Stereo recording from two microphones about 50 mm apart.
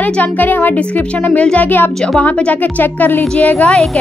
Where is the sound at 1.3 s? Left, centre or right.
Left.